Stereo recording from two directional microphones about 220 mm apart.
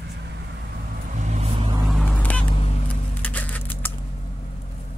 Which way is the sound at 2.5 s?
25° left (ahead or behind).